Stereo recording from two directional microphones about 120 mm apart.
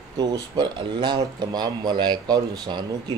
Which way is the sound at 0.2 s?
35° right (ahead or behind).